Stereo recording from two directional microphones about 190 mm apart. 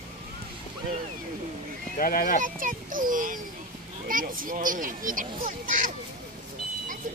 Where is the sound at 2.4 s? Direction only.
45° right (ahead or behind).